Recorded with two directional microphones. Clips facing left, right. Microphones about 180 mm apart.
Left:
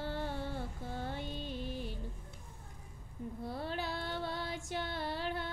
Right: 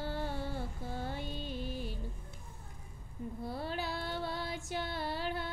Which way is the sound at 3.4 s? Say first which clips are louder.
Right 1 dB; 5° right (ahead or behind).